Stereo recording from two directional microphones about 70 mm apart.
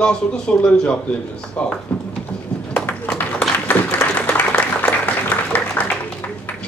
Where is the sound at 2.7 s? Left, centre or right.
Left.